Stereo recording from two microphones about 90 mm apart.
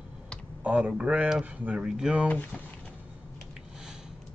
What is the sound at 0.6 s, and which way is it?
Speech, 10° right (ahead or behind).